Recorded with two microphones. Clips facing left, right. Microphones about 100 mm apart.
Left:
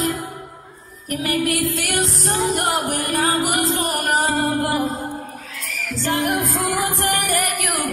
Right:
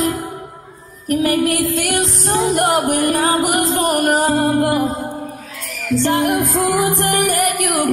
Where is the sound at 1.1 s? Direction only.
45° right (ahead or behind).